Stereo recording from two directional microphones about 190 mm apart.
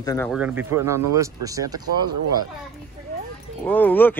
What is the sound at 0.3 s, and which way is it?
Speech, 5° right (ahead or behind).